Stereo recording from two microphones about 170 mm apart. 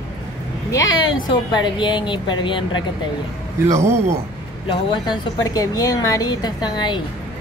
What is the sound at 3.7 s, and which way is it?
Speech, 15° right (ahead or behind).